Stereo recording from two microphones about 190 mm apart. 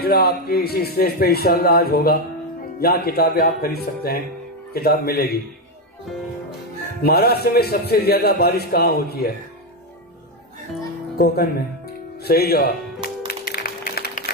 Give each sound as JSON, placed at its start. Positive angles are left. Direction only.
{"t": 0.0, "sound": "a man's voice", "side_deg": 55}
{"t": 7.0, "sound": "a man's voice", "side_deg": 55}
{"t": 11.1, "sound": "a man's voice", "side_deg": 55}
{"t": 13.3, "sound": "music", "side_deg": 55}